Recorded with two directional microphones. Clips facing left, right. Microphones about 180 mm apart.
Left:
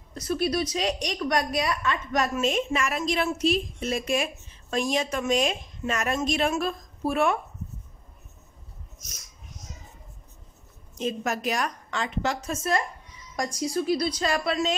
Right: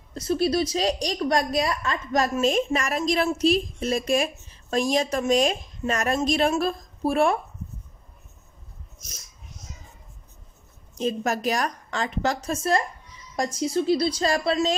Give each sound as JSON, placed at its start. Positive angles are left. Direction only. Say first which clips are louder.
{"t": 0.1, "sound": "a woman's voice", "louder": "right 3 dB", "side_deg": -30}
{"t": 11.0, "sound": "a woman's voice", "louder": "right 3 dB", "side_deg": -35}